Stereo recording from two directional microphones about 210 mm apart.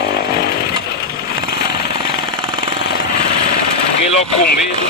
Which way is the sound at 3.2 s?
25° left (ahead or behind).